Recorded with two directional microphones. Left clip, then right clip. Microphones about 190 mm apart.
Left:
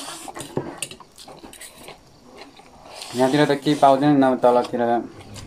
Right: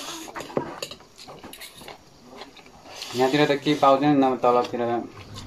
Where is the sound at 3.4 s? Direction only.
20° left (ahead or behind).